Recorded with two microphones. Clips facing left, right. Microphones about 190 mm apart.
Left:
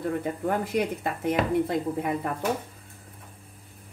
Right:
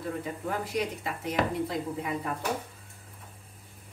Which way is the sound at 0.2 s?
55° left (ahead or behind).